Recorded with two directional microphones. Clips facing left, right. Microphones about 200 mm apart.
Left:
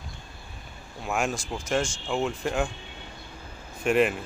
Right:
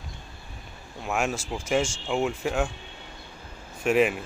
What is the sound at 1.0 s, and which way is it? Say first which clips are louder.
Speech: even; centre (ahead or behind).